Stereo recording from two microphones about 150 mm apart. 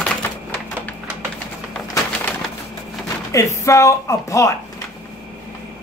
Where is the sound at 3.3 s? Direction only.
20° left (ahead or behind).